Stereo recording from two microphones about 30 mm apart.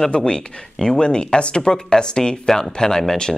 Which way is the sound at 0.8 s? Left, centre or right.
Left.